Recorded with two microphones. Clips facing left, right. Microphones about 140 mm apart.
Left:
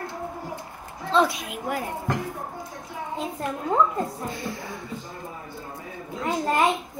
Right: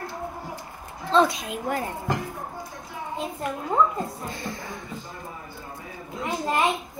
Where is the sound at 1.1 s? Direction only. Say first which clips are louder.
Right 1 dB; 5° left (ahead or behind).